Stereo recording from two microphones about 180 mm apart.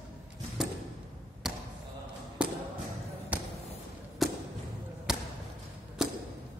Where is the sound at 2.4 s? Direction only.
5° right (ahead or behind).